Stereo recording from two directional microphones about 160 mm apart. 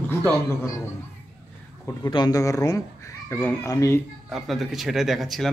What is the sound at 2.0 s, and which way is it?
Speech, 25° left (ahead or behind).